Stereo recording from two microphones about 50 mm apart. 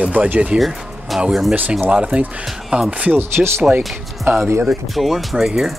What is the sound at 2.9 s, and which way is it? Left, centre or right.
Speech, right.